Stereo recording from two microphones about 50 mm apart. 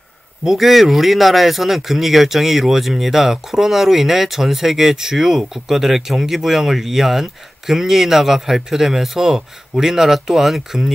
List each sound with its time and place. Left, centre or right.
0.4 s speech: centre